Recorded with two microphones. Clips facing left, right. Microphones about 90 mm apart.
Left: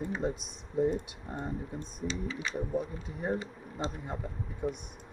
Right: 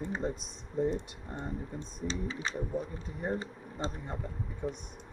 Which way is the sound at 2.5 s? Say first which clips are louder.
Left 2 dB; centre (ahead or behind).